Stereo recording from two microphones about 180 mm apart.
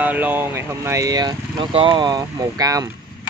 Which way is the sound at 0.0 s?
10° right (ahead or behind).